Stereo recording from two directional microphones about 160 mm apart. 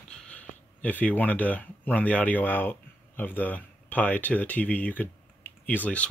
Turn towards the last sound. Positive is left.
turn(degrees=10)  # may be behind; listen again after turning